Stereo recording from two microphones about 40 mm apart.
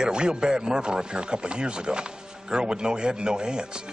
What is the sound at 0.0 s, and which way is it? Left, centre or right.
Speech, right.